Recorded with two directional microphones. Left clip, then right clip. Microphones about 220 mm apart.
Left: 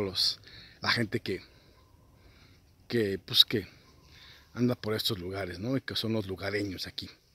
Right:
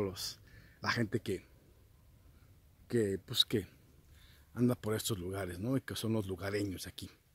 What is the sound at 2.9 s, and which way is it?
Speech, centre (ahead or behind).